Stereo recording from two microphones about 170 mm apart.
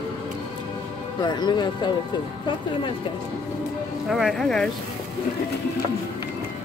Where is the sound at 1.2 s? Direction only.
25° left (ahead or behind).